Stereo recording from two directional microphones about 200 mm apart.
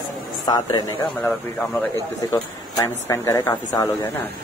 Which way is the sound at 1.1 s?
5° left (ahead or behind).